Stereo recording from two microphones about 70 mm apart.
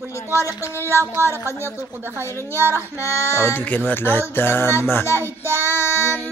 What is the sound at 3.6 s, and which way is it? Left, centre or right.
Speech, left.